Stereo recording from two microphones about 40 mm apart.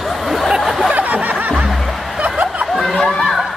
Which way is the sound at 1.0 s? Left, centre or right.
Right.